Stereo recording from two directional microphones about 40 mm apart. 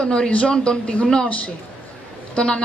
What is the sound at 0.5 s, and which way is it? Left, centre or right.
Speech, left.